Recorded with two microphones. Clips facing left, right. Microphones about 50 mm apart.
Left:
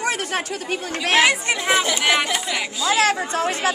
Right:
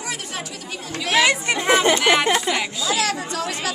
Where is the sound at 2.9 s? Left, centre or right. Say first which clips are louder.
Left 6 dB; left.